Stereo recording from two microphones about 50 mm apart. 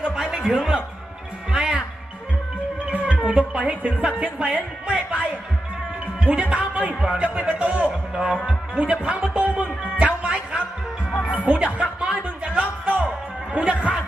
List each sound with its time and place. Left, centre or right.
0.0 s a sound: centre
2.8 s music: right
3.3 s speech: right
9.3 s music: right
10.2 s music: centre
11.4 s speech: right
12.2 s music: right